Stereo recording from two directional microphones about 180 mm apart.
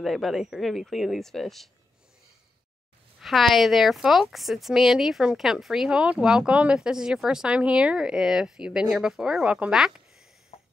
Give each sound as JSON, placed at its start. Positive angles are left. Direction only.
{"t": 0.0, "sound": "a woman's voice", "side_deg": 0}
{"t": 3.2, "sound": "a woman's voice", "side_deg": 0}
{"t": 10.5, "sound": "music", "side_deg": 35}